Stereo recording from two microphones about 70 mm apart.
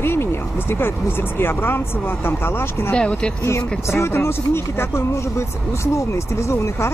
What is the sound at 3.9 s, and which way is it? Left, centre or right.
Speech, left.